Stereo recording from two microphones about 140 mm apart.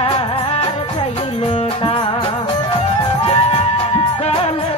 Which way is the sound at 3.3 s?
45° left (ahead or behind).